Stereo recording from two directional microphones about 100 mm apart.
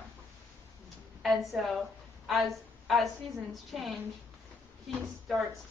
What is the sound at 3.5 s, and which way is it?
Speech, centre (ahead or behind).